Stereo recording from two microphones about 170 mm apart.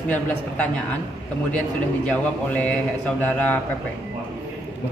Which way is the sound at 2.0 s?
10° left (ahead or behind).